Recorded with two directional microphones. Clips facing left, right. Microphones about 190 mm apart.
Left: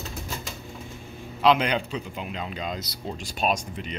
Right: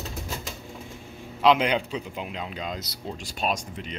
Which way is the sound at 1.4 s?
20° right (ahead or behind).